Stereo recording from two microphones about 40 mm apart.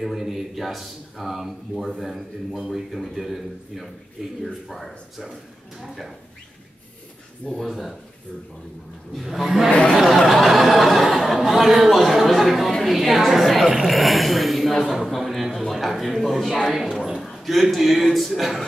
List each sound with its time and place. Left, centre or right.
0.0 s a man's voice: centre
7.5 s a man's voice: centre
9.1 s a man's voice: centre
9.7 s a sound: left
10.0 s a sound: centre
12.8 s a woman's voice: centre